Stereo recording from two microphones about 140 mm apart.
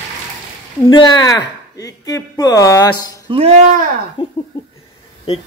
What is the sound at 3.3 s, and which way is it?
Speech, 40° right (ahead or behind).